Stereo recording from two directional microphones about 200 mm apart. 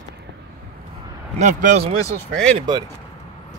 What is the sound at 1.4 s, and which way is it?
Speech, 35° right (ahead or behind).